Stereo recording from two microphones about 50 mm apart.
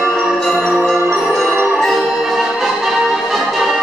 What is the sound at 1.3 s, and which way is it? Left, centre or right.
Music, centre.